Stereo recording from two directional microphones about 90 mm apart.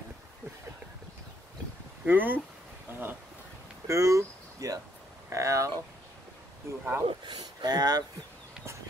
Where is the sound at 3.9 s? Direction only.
35° right (ahead or behind).